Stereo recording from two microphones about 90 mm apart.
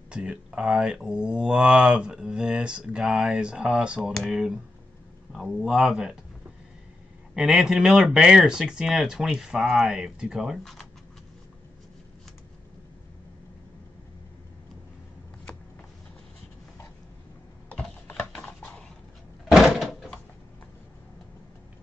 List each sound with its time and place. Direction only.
0.1 s speech: 10° right (ahead or behind)
7.3 s speech: 5° right (ahead or behind)
17.6 s typing: 15° left (ahead or behind)
19.5 s door: centre (ahead or behind)